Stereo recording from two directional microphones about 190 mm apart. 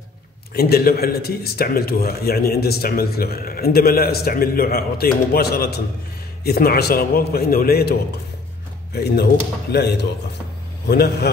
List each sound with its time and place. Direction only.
0.6 s a man's voice: 55° left (ahead or behind)